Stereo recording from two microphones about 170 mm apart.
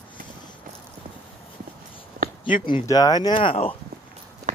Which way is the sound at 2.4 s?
30° left (ahead or behind).